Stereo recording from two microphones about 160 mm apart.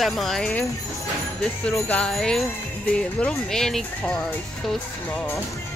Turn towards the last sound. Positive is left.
turn(degrees=15)  # may be behind; listen again after turning